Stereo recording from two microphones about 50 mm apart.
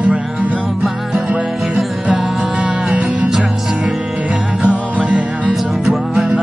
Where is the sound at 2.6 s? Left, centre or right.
Right.